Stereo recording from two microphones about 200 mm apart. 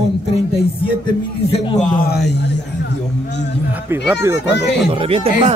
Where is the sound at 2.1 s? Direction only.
60° left (ahead or behind).